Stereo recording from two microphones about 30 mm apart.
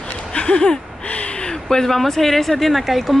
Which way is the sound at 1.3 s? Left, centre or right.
Left.